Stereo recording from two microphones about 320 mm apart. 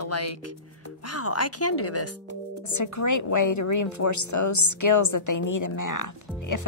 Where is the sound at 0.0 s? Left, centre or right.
Left.